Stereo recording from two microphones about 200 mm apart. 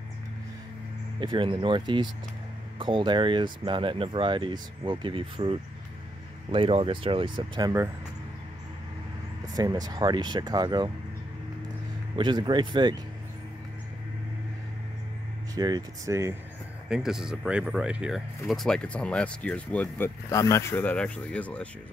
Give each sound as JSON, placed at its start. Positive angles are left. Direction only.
{"t": 1.2, "sound": "speech", "side_deg": -25}
{"t": 9.5, "sound": "speech", "side_deg": -20}
{"t": 12.2, "sound": "speech", "side_deg": -20}
{"t": 15.5, "sound": "speech", "side_deg": -20}
{"t": 16.9, "sound": "speech", "side_deg": 0}